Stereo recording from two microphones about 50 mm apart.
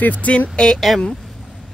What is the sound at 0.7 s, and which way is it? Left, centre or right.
Speech, centre.